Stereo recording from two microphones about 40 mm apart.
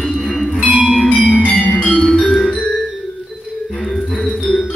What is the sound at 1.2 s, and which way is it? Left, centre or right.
Music, left.